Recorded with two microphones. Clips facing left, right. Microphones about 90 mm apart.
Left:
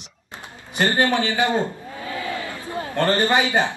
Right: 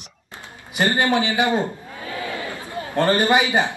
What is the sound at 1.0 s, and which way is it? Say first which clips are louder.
A man's voice: even; 20° right (ahead or behind).